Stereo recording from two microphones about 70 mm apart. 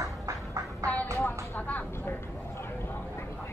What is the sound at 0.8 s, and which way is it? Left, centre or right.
Music, right.